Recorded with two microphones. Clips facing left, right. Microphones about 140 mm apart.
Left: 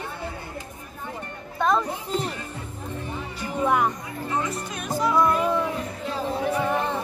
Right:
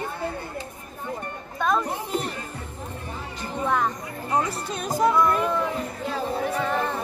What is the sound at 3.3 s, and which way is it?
Music, 10° left (ahead or behind).